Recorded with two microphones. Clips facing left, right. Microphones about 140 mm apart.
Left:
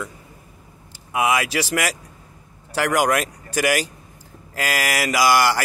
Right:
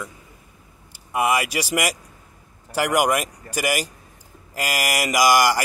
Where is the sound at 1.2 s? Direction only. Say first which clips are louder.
Left 1 dB; 10° right (ahead or behind).